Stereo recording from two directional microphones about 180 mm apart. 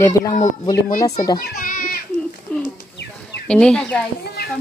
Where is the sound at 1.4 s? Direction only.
55° left (ahead or behind).